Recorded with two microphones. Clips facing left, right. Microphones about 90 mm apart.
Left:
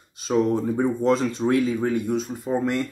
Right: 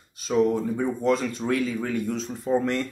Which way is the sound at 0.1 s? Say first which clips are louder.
Left 1 dB; 20° left (ahead or behind).